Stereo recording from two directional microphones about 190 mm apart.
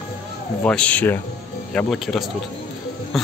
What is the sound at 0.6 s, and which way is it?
Speech, 5° left (ahead or behind).